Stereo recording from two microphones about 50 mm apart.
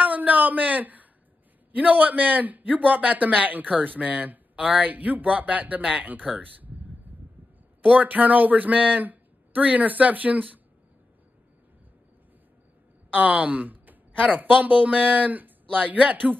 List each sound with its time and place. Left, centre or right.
0.0 s a sound: right
1.7 s a man's voice: right
7.8 s a man's voice: right
13.1 s a man's voice: right